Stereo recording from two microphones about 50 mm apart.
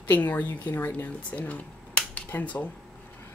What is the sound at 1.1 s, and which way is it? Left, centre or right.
Speech, left.